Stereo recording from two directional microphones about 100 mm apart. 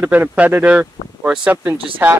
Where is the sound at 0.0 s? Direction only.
15° right (ahead or behind).